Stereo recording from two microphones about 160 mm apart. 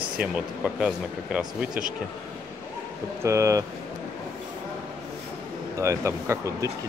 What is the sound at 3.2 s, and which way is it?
Speech, 20° right (ahead or behind).